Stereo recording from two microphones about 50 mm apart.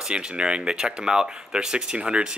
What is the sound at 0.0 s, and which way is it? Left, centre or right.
Speech, centre.